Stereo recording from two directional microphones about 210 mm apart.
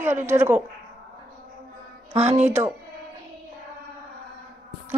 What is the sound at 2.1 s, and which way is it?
Speech, 30° right (ahead or behind).